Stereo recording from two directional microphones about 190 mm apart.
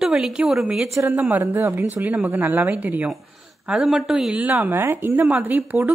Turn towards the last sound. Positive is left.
turn(degrees=-10)  # may be behind; listen again after turning